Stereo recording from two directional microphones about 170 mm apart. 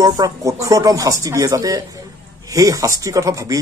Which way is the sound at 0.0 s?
20° right (ahead or behind).